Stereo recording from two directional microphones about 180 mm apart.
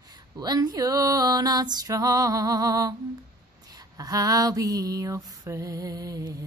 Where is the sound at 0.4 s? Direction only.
20° right (ahead or behind).